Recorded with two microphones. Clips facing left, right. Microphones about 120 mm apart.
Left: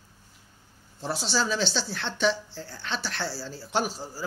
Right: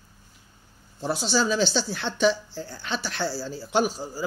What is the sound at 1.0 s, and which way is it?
Speech, centre (ahead or behind).